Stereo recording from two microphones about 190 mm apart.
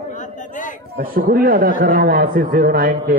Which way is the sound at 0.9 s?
50° right (ahead or behind).